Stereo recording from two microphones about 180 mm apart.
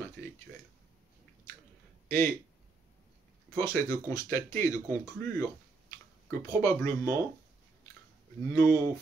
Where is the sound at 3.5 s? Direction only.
15° left (ahead or behind).